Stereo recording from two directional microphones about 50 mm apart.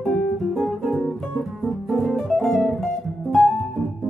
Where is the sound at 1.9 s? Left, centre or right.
Centre.